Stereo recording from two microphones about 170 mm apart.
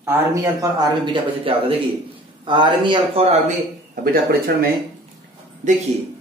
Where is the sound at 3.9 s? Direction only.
60° right (ahead or behind).